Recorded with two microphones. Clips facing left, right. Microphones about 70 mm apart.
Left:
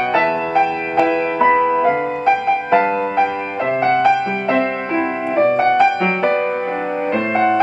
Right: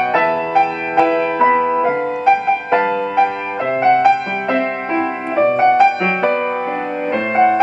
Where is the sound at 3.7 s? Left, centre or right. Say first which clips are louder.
Right 3 dB; right.